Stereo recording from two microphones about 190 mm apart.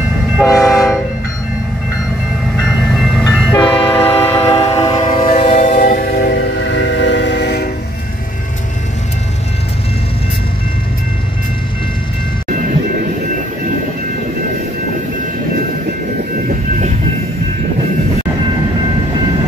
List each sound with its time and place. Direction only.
0.6 s train: centre (ahead or behind)
2.5 s train: centre (ahead or behind)
4.4 s train: 30° left (ahead or behind)
5.4 s music: 30° left (ahead or behind)
6.3 s train: 70° left (ahead or behind)